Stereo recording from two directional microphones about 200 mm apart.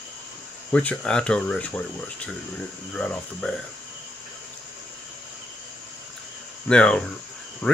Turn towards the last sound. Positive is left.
turn(degrees=5)  # may be behind; listen again after turning